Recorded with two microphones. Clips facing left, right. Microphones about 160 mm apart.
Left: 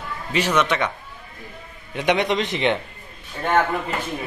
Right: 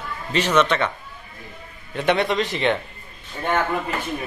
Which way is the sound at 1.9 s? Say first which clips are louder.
Even; 15° left (ahead or behind).